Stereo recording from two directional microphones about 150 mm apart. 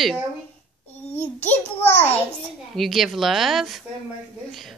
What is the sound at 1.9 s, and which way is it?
Speech, 45° left (ahead or behind).